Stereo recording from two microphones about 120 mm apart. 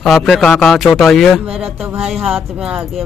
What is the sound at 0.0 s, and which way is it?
Speech, centre (ahead or behind).